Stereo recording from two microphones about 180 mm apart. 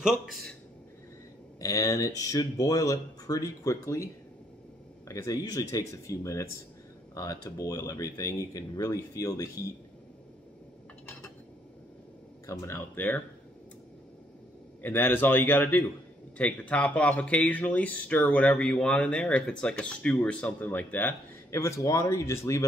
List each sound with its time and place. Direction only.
0.0 s a man's voice: centre (ahead or behind)
1.6 s speech: 20° left (ahead or behind)
12.4 s speech: 15° left (ahead or behind)
14.8 s speech: 10° left (ahead or behind)